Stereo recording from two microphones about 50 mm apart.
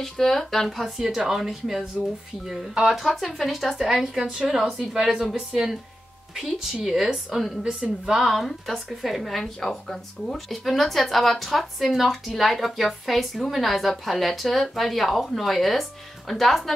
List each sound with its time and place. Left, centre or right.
0.0 s speech: centre
8.2 s speech: centre